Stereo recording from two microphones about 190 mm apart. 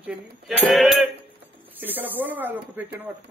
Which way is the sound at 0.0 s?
5° right (ahead or behind).